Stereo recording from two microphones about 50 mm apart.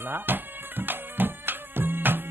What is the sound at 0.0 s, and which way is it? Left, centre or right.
Music, right.